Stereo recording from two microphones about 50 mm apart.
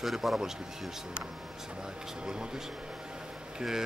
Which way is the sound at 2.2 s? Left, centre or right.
Centre.